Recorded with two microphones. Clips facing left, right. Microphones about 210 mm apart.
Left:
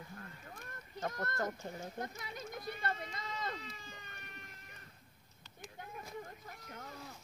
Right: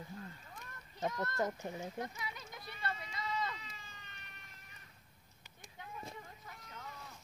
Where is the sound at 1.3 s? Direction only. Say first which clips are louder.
Right 2 dB; 15° right (ahead or behind).